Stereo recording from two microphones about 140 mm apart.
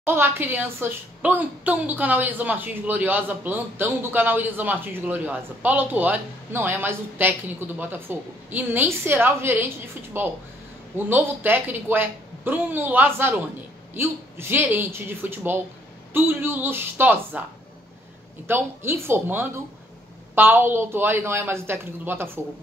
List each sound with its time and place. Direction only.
0.0 s a woman's voice: 15° right (ahead or behind)
18.5 s a woman's voice: 15° right (ahead or behind)